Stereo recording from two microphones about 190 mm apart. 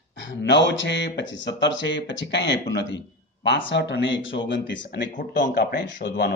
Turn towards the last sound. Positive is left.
turn(degrees=60)  # may be behind; listen again after turning